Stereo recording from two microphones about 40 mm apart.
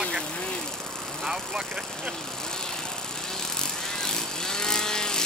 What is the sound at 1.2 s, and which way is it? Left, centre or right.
Vehicle, centre.